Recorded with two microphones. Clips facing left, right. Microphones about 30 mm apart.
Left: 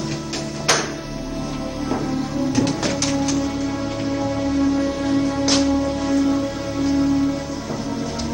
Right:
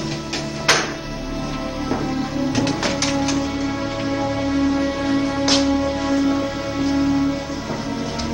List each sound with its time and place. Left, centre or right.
0.7 s music: right
2.5 s music: centre